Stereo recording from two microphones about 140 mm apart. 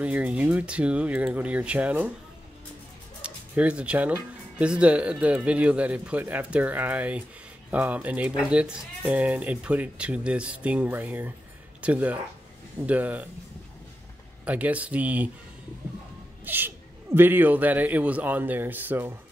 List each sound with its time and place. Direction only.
0.0 s speech: 10° right (ahead or behind)
3.2 s speech: 10° right (ahead or behind)
14.4 s speech: 10° right (ahead or behind)
16.4 s speech: 15° right (ahead or behind)